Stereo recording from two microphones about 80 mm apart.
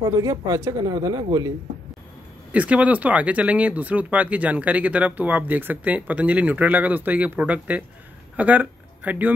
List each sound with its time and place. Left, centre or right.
0.1 s speech: right
2.5 s speech: centre